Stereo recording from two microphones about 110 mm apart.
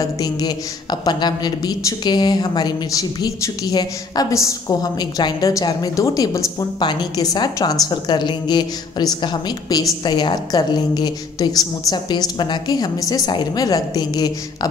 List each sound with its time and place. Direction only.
0.0 s a woman's voice: 35° left (ahead or behind)